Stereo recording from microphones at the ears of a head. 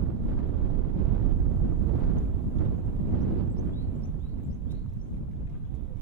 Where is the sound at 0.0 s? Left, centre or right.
Right.